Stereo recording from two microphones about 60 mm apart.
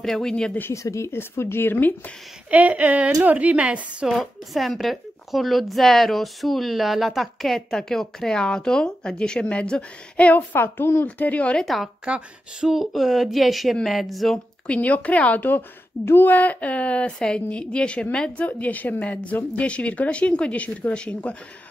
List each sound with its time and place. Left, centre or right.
0.0 s speech: centre
0.8 s speech: left
2.5 s a woman's voice: right
4.1 s a woman's voice: centre; by 11.5 s left
11.6 s speech: centre
12.0 s speech: centre
12.9 s speech: centre
14.7 s a woman's voice: left
18.5 s a woman's voice: left